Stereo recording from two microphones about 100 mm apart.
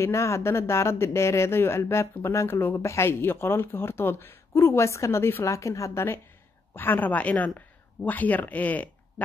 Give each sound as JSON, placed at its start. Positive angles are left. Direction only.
{"t": 0.0, "sound": "speech", "side_deg": 30}